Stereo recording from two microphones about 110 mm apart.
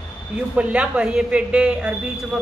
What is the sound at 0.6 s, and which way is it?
Speech, 10° right (ahead or behind).